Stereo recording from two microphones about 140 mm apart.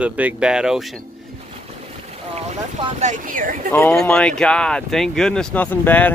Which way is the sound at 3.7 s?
15° left (ahead or behind).